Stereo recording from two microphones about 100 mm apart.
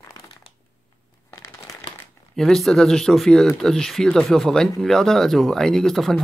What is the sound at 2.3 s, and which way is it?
Speech, 5° left (ahead or behind).